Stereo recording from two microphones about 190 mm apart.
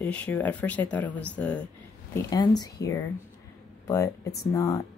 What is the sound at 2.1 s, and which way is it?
Speech, 20° left (ahead or behind).